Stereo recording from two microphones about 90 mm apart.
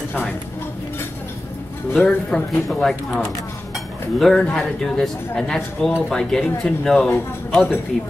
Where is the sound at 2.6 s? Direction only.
Centre (ahead or behind).